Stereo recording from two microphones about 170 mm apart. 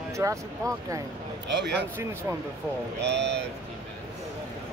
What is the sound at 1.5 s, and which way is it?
Speech, 90° right.